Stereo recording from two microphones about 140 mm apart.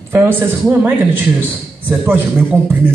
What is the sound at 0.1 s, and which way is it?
A man's voice, 15° right (ahead or behind).